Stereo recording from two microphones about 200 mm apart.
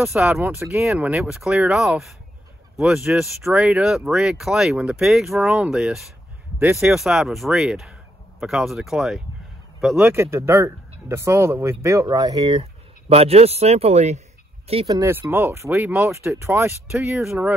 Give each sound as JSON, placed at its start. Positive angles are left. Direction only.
{"t": 0.1, "sound": "a man's voice", "side_deg": -5}
{"t": 15.0, "sound": "speech", "side_deg": -10}